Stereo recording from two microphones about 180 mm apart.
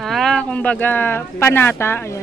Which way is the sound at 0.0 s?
Centre (ahead or behind).